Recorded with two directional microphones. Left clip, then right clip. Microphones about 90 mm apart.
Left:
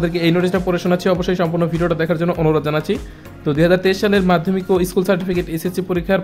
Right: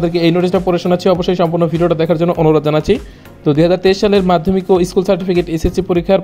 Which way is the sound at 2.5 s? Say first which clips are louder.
Right 6 dB; 55° right (ahead or behind).